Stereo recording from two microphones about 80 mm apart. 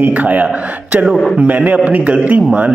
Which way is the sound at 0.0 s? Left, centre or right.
Centre.